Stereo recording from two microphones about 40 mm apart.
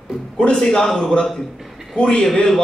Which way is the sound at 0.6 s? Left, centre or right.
Centre.